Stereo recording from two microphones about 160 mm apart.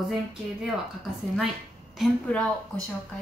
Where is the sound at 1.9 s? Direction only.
5° left (ahead or behind).